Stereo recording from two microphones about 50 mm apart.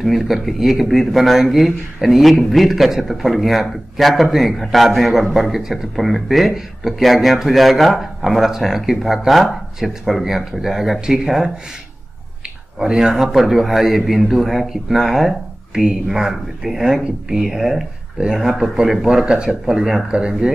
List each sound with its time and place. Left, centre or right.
0.0 s speech: centre
12.7 s speech: centre
19.2 s speech: centre